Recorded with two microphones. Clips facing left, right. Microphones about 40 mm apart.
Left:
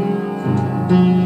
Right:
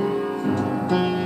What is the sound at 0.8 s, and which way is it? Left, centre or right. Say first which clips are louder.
Music: left 9 dB; left.